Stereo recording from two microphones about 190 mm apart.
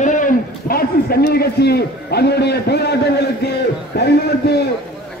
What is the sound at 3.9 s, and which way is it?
Speech, 60° left (ahead or behind).